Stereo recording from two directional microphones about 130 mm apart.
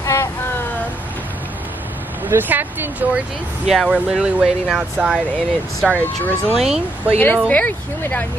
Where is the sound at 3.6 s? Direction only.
Centre (ahead or behind).